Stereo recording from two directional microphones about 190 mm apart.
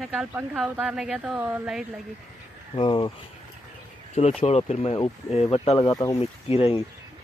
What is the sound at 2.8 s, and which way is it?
Speech, 25° left (ahead or behind).